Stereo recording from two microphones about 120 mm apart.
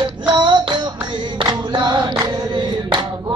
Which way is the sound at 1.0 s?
40° right (ahead or behind).